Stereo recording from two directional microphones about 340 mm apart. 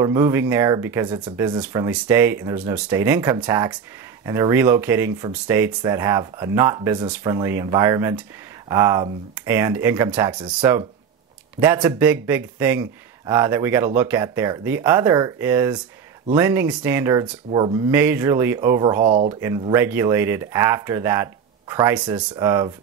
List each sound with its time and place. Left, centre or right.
0.0 s speech: centre
19.0 s speech: centre
19.4 s speech: centre